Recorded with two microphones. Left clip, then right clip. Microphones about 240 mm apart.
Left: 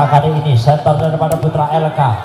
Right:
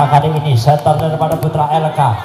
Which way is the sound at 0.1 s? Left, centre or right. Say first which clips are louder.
Even; right.